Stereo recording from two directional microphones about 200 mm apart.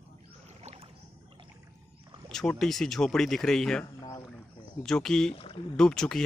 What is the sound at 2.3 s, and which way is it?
Speech, centre (ahead or behind).